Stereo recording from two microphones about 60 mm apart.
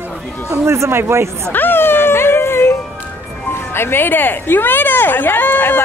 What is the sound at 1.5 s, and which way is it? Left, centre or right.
Music, left.